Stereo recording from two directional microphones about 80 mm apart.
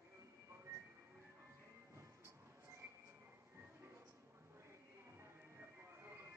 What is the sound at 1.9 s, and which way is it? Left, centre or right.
Train, right.